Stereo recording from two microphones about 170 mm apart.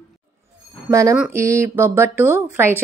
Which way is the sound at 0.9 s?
20° right (ahead or behind).